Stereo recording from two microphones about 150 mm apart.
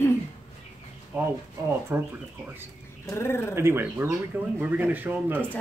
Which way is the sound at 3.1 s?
15° left (ahead or behind).